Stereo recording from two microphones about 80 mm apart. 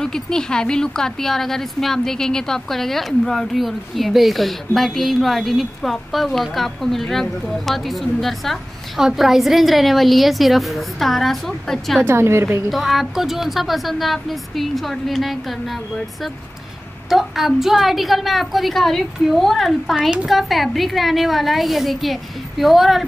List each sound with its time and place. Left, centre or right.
0.0 s a woman's voice: centre
12.0 s a woman's voice: right
12.7 s a woman's voice: centre
17.1 s a woman's voice: centre